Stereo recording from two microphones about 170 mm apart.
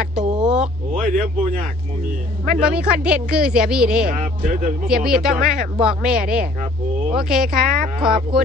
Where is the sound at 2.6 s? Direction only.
5° right (ahead or behind).